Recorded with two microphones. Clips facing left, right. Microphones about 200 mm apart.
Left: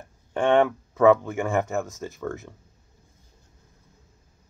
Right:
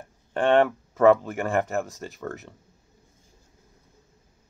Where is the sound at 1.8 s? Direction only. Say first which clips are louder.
Even; 15° right (ahead or behind).